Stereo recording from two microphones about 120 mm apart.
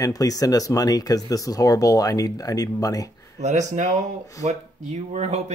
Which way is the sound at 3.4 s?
80° right.